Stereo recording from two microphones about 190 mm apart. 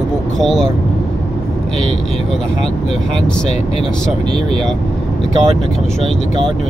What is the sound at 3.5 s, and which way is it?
Speech, 35° left (ahead or behind).